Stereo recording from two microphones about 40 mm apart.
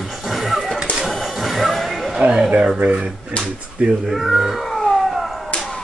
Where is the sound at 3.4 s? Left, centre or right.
Centre.